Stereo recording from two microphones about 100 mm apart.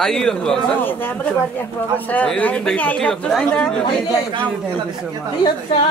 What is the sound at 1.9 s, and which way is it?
Speech, 15° left (ahead or behind).